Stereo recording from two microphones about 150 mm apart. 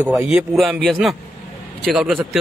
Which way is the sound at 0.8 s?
Centre (ahead or behind).